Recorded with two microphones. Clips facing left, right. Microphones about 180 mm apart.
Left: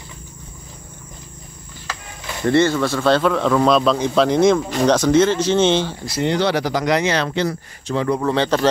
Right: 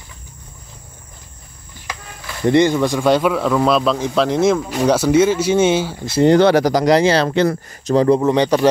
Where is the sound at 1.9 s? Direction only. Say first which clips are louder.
Right 1 dB; 15° right (ahead or behind).